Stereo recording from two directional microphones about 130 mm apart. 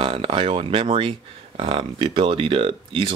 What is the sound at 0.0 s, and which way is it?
Speech, 45° right (ahead or behind).